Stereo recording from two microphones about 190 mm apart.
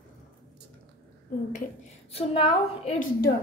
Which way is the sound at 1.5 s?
35° left (ahead or behind).